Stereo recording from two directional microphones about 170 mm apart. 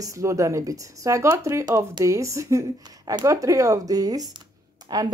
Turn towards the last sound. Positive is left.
turn(degrees=-25)  # may be behind; listen again after turning